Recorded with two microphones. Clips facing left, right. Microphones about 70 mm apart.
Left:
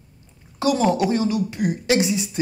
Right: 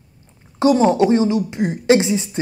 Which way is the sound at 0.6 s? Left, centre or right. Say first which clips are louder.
Right 5 dB; right.